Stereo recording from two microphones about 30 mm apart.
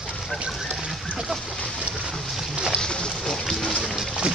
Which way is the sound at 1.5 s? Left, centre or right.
Left.